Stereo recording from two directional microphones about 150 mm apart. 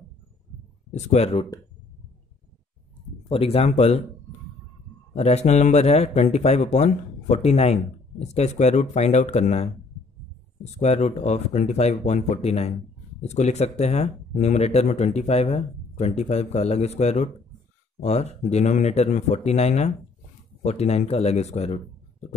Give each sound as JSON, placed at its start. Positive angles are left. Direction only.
{"t": 0.9, "sound": "a man's voice", "side_deg": 50}
{"t": 3.3, "sound": "a man's voice", "side_deg": 40}
{"t": 5.1, "sound": "a man's voice", "side_deg": 45}